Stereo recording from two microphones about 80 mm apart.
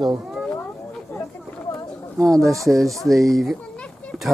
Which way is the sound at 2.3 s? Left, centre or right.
Centre.